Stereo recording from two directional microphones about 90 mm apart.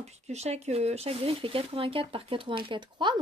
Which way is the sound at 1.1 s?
90° right.